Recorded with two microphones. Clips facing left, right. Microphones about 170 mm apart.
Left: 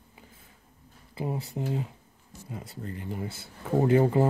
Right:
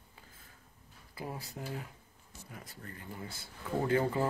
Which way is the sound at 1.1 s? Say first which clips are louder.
Left 9 dB; 25° left (ahead or behind).